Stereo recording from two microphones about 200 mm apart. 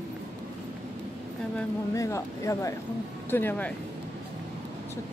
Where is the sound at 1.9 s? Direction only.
15° left (ahead or behind).